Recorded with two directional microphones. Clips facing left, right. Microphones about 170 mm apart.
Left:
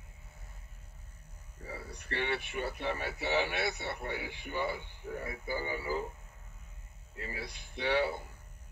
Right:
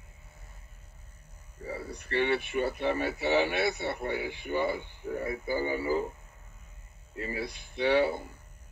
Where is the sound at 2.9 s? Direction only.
20° right (ahead or behind).